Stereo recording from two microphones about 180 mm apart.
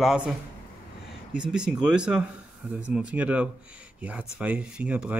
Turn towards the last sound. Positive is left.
turn(degrees=-5)  # may be behind; listen again after turning